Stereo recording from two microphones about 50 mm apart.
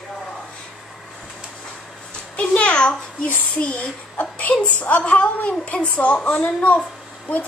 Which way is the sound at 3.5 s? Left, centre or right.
Left.